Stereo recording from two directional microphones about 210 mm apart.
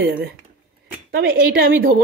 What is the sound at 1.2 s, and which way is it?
Speech, 45° right (ahead or behind).